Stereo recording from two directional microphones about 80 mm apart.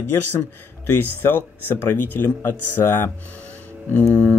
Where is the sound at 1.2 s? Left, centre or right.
Left.